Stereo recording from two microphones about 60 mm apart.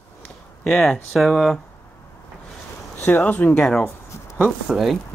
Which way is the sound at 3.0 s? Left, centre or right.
Left.